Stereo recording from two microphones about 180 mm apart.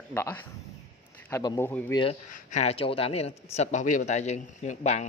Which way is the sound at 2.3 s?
40° left (ahead or behind).